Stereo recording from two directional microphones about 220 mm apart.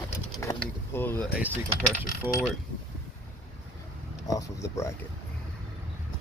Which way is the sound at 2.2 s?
10° right (ahead or behind).